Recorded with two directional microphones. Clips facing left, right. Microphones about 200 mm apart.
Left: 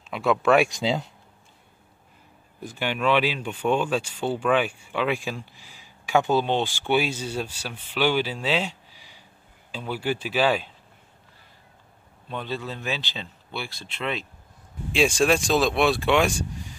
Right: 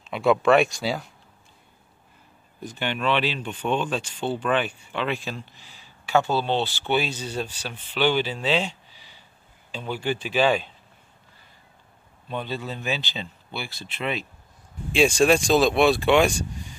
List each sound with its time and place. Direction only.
0.1 s speech: centre (ahead or behind)
0.7 s speech: 20° left (ahead or behind)
2.6 s speech: 10° left (ahead or behind)
12.3 s speech: centre (ahead or behind)